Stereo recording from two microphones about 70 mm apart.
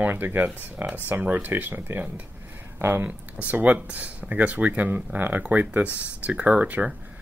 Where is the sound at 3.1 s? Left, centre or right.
Right.